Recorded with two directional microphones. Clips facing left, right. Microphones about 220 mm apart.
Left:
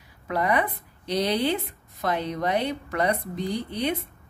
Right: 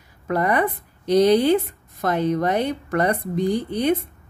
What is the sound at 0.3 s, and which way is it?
A woman's voice, 45° right (ahead or behind).